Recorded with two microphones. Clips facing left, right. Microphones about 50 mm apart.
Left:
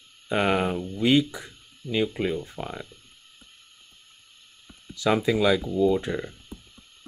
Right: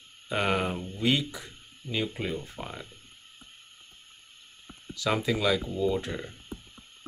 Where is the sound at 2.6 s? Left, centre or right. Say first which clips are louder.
Left 5 dB; left.